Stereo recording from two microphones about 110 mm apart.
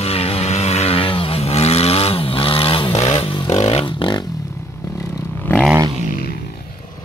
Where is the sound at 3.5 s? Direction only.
70° left (ahead or behind); by 4.3 s 45° left (ahead or behind).